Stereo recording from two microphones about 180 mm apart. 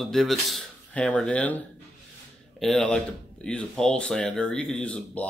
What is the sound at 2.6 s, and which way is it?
Speech, 5° left (ahead or behind).